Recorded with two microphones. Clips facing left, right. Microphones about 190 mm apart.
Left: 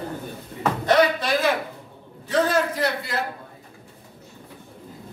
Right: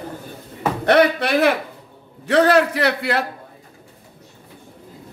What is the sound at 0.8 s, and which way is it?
A man's voice, 65° right (ahead or behind).